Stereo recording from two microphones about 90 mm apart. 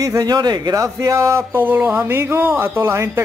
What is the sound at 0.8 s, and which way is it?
Speech, 35° right (ahead or behind).